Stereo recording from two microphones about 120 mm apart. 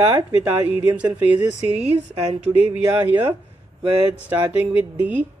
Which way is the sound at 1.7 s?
60° right (ahead or behind).